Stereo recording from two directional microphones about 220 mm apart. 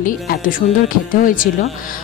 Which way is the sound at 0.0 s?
40° left (ahead or behind).